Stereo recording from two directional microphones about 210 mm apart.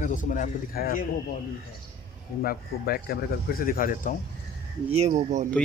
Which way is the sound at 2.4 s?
45° left (ahead or behind).